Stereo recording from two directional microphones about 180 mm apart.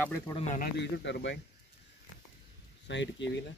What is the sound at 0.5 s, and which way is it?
Speech, 65° left (ahead or behind).